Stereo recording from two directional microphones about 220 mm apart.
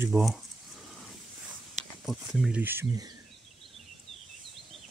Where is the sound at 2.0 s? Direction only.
Centre (ahead or behind).